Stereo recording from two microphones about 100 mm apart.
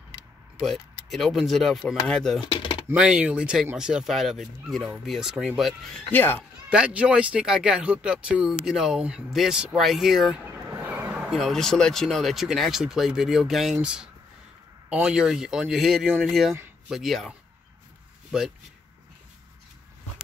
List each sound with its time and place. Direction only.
0.6 s speech: centre (ahead or behind)
2.4 s speech: 50° left (ahead or behind)
2.9 s speech: 10° right (ahead or behind)
6.1 s speech: 20° left (ahead or behind)
6.7 s speech: 10° right (ahead or behind)
10.4 s vehicle: 20° right (ahead or behind)
10.9 s speech: 15° right (ahead or behind)